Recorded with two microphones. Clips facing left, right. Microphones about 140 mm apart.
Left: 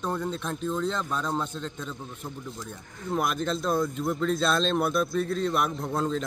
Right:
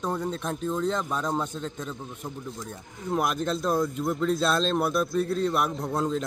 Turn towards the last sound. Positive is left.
turn(degrees=-10)  # may be behind; listen again after turning